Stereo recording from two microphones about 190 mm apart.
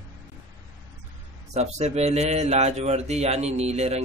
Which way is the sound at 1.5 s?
35° right (ahead or behind).